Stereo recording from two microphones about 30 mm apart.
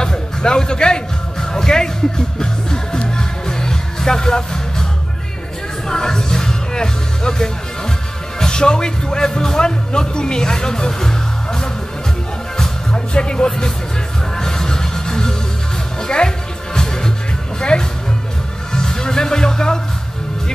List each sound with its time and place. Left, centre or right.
0.0 s a sound: left
1.5 s music: left
5.9 s music: left
8.5 s speech: left
12.9 s speech: left
14.4 s music: left
17.6 s music: left